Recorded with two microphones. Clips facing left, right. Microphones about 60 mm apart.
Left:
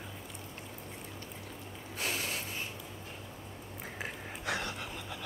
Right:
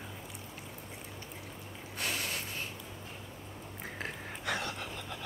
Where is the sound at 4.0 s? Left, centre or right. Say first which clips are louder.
Even; centre.